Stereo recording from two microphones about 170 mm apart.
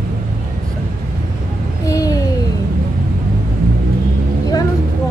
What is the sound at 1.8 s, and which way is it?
Speech, 20° left (ahead or behind).